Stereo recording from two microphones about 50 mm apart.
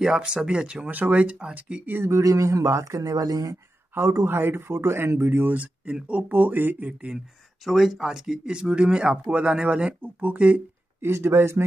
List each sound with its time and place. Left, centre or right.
0.0 s speech: centre
0.8 s speech: right
2.0 s a man's voice: right
4.0 s a man's voice: right
4.3 s speech: right
5.5 s speech: right
7.6 s speech: centre; by 10.6 s right
11.0 s speech: right